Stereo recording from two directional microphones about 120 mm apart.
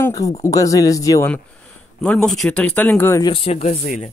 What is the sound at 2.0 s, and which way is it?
Speech, 5° left (ahead or behind).